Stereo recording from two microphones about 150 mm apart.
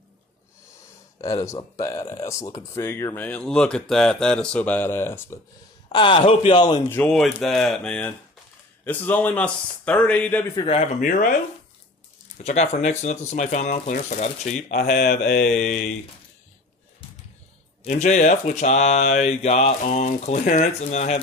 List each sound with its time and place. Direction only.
1.2 s speech: 20° left (ahead or behind)
5.9 s a man's voice: 35° left (ahead or behind)
6.9 s speech: 10° left (ahead or behind)
10.5 s a man's voice: 35° left (ahead or behind)
11.0 s speech: 60° left (ahead or behind)
12.4 s speech: 55° left (ahead or behind)
14.8 s mantra: 90° left
15.4 s speech: 55° left (ahead or behind)
17.8 s speech: 55° left (ahead or behind)